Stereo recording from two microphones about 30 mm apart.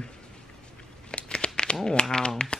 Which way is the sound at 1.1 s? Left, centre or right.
Left.